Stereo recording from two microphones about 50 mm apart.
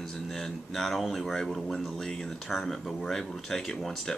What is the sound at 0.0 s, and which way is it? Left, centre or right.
A man's voice, centre.